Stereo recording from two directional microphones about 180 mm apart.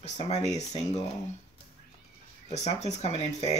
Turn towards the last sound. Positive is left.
turn(degrees=40)  # may be behind; listen again after turning